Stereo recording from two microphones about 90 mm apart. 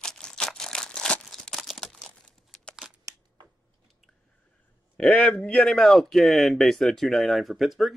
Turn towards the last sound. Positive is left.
turn(degrees=0)  # may be behind; listen again after turning